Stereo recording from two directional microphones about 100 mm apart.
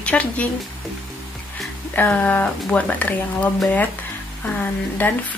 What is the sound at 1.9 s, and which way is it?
Speech, 15° left (ahead or behind).